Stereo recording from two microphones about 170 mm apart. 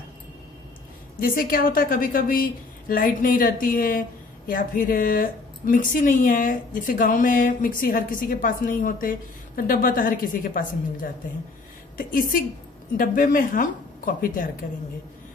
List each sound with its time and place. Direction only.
1.2 s a woman's voice: 55° left (ahead or behind)